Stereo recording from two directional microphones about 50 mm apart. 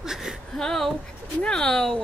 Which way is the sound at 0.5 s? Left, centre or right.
Centre.